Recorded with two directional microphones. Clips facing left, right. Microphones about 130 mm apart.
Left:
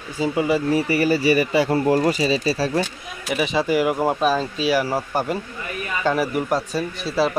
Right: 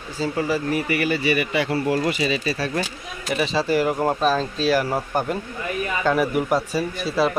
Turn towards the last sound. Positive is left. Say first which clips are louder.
# even
turn(degrees=0)  # may be behind; listen again after turning